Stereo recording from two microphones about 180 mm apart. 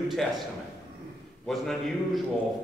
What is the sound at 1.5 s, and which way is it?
Speech, centre (ahead or behind).